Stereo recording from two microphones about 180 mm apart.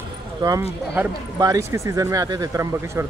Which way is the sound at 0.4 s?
20° right (ahead or behind).